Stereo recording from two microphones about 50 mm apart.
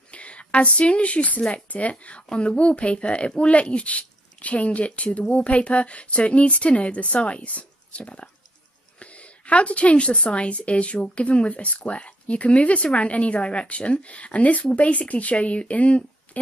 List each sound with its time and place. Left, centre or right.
0.1 s a woman's voice: left